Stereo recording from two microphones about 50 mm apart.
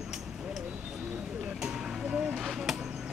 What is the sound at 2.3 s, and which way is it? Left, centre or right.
Chop, centre.